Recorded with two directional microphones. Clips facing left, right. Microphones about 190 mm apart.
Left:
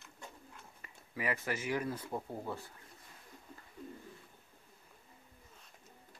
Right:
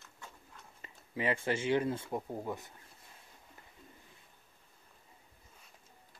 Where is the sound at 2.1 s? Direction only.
15° right (ahead or behind).